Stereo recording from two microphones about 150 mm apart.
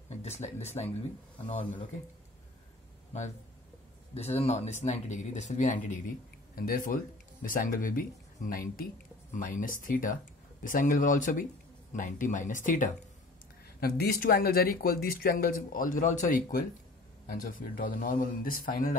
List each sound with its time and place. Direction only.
0.2 s speech: 45° left (ahead or behind)
4.1 s speech: 45° left (ahead or behind); by 7.0 s 75° left (ahead or behind)
7.4 s speech: 65° left (ahead or behind)
9.3 s speech: 60° left (ahead or behind)
13.7 s speech: 90° left; by 18.9 s 65° left (ahead or behind)